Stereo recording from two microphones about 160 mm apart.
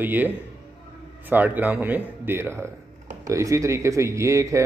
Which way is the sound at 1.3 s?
10° right (ahead or behind).